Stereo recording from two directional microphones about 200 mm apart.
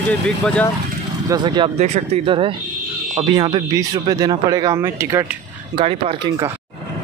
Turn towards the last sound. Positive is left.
turn(degrees=-20)  # may be behind; listen again after turning